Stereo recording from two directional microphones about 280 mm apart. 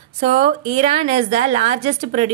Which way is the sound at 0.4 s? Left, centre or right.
Right.